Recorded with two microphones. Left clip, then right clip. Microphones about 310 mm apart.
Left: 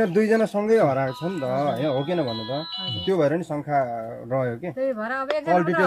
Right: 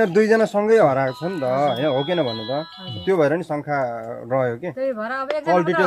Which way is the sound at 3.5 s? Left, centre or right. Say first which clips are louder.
Right 1 dB; right.